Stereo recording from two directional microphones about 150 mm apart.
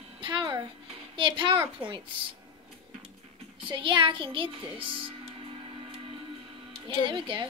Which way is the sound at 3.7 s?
35° right (ahead or behind).